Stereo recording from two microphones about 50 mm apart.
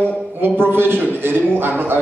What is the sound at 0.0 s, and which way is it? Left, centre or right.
A man's voice, right.